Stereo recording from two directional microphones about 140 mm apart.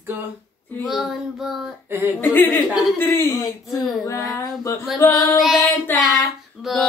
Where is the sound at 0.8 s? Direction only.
5° right (ahead or behind).